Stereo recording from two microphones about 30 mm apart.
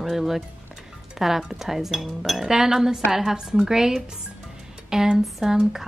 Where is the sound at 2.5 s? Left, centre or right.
Centre.